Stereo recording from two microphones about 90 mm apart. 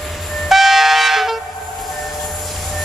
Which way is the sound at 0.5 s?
Centre (ahead or behind).